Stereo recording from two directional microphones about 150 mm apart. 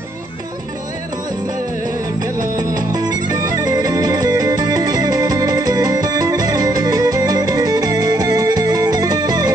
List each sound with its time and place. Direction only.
2.1 s music: 25° right (ahead or behind)